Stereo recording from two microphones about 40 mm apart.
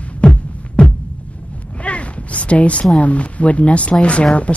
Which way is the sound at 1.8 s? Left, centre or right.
Left.